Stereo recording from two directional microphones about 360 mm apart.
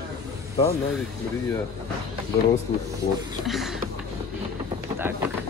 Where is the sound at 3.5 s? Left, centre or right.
Centre.